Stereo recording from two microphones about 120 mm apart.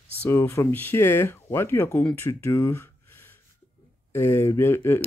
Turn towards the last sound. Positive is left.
turn(degrees=20)  # may be behind; listen again after turning